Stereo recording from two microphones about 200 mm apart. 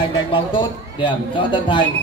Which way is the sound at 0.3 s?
25° left (ahead or behind).